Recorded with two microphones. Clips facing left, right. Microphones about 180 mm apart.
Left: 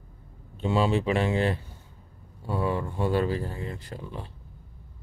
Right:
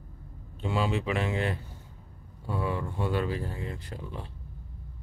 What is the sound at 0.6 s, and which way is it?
Speech, 25° left (ahead or behind).